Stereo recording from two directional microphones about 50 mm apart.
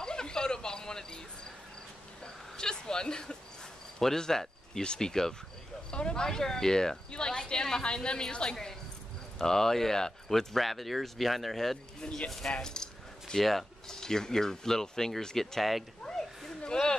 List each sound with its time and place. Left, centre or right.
0.0 s a sound: centre
2.2 s speech: centre
12.0 s speech: centre
12.3 s speech: centre